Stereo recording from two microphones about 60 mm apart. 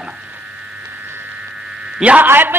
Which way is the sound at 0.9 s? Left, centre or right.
Right.